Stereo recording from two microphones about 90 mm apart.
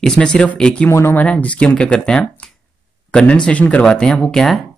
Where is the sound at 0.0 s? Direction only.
10° left (ahead or behind).